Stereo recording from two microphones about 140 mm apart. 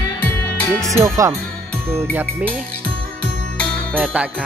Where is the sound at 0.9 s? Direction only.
20° right (ahead or behind).